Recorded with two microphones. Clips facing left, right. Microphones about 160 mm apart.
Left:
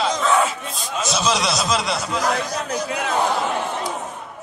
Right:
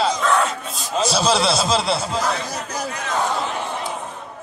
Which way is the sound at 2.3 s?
70° left (ahead or behind).